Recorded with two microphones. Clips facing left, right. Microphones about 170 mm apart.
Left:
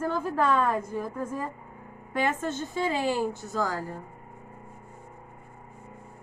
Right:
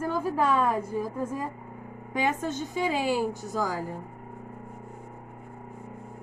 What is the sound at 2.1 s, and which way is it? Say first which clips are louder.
A woman's voice: even; 15° right (ahead or behind).